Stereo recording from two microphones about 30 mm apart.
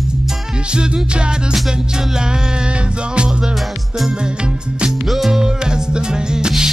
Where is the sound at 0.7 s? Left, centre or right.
Right.